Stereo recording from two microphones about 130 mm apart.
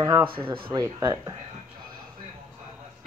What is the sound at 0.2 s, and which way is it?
Speech, 40° right (ahead or behind).